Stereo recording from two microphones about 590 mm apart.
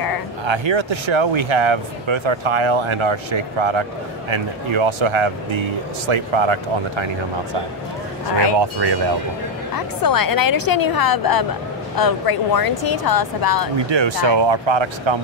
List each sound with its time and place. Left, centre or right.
0.5 s speech: right
8.5 s speech: right
9.8 s speech: left
13.8 s speech: right